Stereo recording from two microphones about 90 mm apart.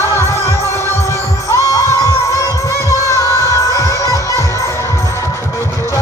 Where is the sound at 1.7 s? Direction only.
35° left (ahead or behind).